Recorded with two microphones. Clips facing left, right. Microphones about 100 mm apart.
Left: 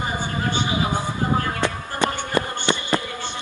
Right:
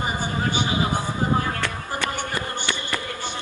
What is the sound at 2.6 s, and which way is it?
Basketball bounce, 20° left (ahead or behind).